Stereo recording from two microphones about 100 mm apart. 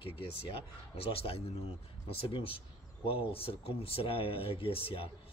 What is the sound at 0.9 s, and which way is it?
Speech, 70° left (ahead or behind).